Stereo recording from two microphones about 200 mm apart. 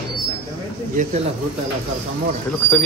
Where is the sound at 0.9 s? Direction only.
40° right (ahead or behind).